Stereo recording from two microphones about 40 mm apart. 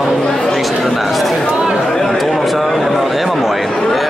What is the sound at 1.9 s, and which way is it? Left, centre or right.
Chatter, centre.